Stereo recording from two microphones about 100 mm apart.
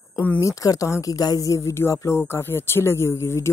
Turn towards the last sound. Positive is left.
turn(degrees=25)  # may be behind; listen again after turning